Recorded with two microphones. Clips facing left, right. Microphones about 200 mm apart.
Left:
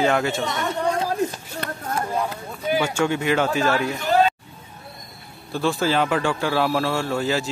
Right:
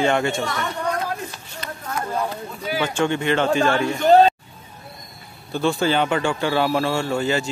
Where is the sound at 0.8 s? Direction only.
30° left (ahead or behind).